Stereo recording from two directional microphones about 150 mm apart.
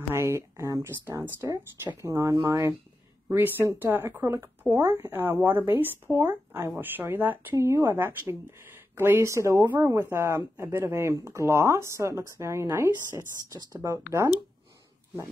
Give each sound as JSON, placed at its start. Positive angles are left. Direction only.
{"t": 0.1, "sound": "speech", "side_deg": -15}